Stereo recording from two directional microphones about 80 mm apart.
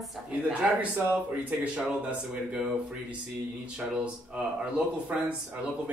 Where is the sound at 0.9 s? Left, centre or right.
Centre.